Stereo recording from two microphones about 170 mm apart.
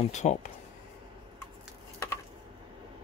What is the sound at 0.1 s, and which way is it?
Speech, 45° left (ahead or behind).